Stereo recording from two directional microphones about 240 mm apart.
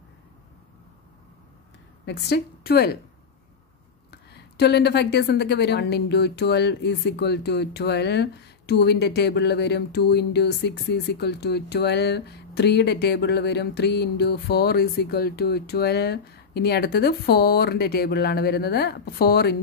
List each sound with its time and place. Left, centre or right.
2.0 s a woman's voice: left
4.1 s a woman's voice: left